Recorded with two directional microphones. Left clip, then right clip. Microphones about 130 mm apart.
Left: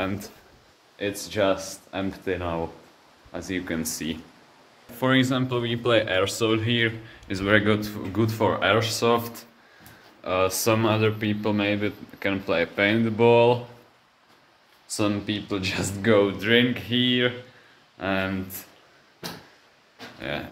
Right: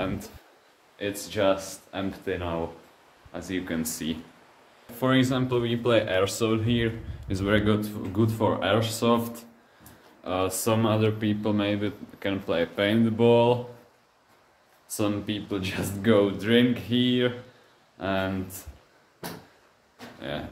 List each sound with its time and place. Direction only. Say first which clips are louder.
0.9 s speech: left 2 dB; 55° left (ahead or behind)
3.9 s speech: left 1 dB; 20° left (ahead or behind)
4.9 s speech: left 2 dB; 5° left (ahead or behind)
8.2 s speech: left 2 dB; 15° left (ahead or behind)
10.2 s speech: left 4 dB; 15° left (ahead or behind)
11.1 s speech: left 1 dB; 10° left (ahead or behind)
14.9 s speech: left 2 dB; 25° left (ahead or behind); by 18.3 s 5° left (ahead or behind)
20.2 s speech: left 3 dB; 20° left (ahead or behind)